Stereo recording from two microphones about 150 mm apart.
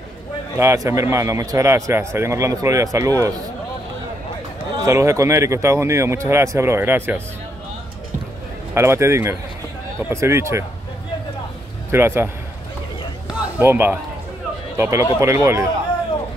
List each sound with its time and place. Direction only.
0.6 s speech: 20° right (ahead or behind)
4.8 s speech: 20° right (ahead or behind)
8.7 s speech: 20° right (ahead or behind)
11.9 s speech: 15° right (ahead or behind)
13.6 s speech: 15° right (ahead or behind)